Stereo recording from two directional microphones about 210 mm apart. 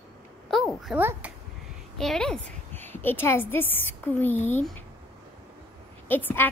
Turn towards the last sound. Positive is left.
turn(degrees=10)  # may be behind; listen again after turning